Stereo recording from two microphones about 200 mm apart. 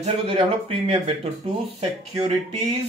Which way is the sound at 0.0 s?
30° right (ahead or behind).